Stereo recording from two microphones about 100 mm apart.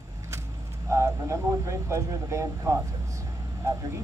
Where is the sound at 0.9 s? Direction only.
30° right (ahead or behind).